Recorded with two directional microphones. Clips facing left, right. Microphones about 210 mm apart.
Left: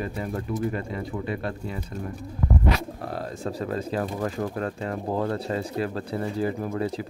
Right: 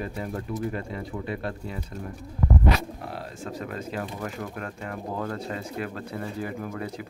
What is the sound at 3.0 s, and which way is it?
Speech, 40° left (ahead or behind).